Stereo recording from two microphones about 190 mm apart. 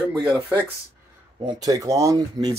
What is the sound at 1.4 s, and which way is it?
Speech, 20° right (ahead or behind).